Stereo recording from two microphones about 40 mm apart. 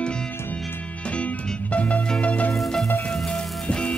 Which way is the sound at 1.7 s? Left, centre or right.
Left.